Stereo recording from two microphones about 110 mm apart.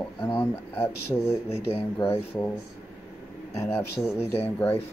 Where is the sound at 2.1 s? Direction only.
20° left (ahead or behind).